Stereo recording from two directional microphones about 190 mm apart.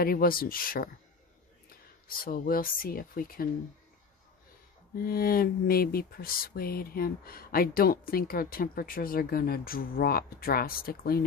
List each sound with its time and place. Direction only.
0.0 s speech: 50° left (ahead or behind)
4.9 s speech: 50° left (ahead or behind)